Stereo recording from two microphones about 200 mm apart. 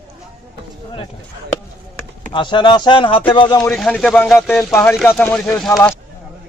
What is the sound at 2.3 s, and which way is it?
Speech, 25° left (ahead or behind).